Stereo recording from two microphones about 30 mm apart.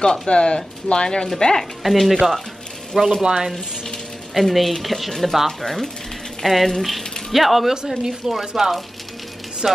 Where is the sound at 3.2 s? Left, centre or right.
Right.